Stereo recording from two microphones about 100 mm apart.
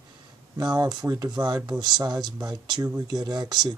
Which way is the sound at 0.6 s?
45° right (ahead or behind).